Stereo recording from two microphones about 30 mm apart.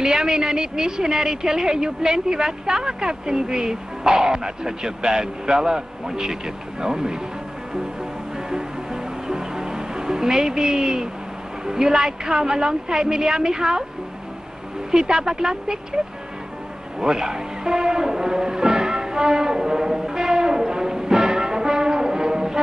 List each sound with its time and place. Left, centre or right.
0.0 s a woman's voice: right
8.5 s music: right
11.6 s a woman's voice: right
14.9 s a woman's voice: right
17.0 s music: right